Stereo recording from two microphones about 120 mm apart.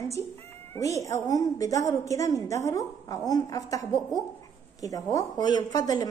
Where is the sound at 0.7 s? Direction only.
25° left (ahead or behind).